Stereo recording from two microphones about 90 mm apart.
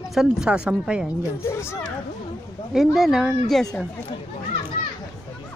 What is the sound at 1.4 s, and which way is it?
Speech, 30° left (ahead or behind).